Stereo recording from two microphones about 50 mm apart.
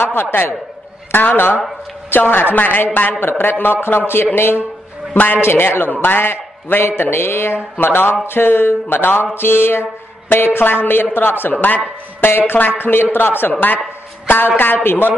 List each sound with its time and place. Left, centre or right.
0.0 s mantra: left
1.1 s a man's voice: left
2.5 s mantra: left
5.1 s a man's voice: left
5.4 s mantra: left
13.5 s a man's voice: left
14.6 s mantra: left